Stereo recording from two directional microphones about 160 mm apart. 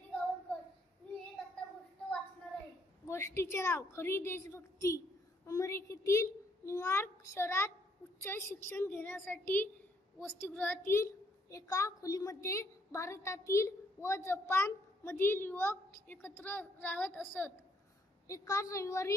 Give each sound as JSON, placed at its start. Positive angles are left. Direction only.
{"t": 3.1, "sound": "a child's voice", "side_deg": 15}